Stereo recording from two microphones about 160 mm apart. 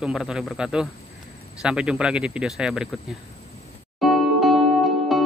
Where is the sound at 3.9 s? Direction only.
Centre (ahead or behind).